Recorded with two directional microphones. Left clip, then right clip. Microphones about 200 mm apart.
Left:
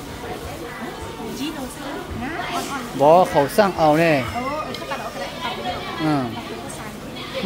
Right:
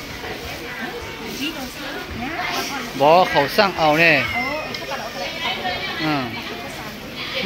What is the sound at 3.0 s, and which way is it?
Speech, 20° left (ahead or behind).